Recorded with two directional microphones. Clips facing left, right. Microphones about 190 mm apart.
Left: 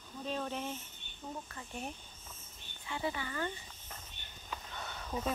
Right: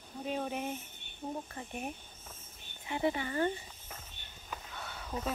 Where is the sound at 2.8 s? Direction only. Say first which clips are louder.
Right 5 dB; 25° right (ahead or behind).